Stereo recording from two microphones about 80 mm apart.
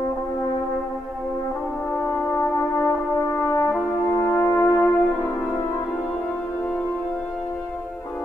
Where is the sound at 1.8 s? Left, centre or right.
Left.